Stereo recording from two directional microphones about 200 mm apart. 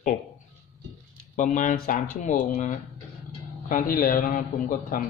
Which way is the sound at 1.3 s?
40° left (ahead or behind).